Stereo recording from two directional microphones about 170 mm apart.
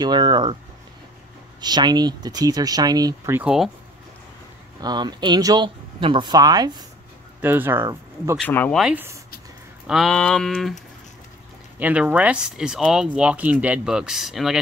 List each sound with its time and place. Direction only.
0.0 s speech: 25° right (ahead or behind)
1.6 s speech: 25° right (ahead or behind)
3.3 s speech: 5° right (ahead or behind)
4.8 s speech: 25° right (ahead or behind)
7.4 s speech: 10° right (ahead or behind)
8.4 s speech: 10° left (ahead or behind)
8.7 s speech: 5° right (ahead or behind)
9.8 s speech: centre (ahead or behind)
11.8 s speech: 5° right (ahead or behind)